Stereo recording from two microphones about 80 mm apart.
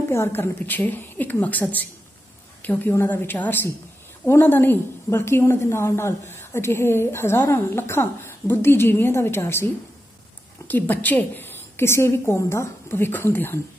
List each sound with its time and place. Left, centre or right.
0.1 s a woman's voice: left
10.7 s a woman's voice: left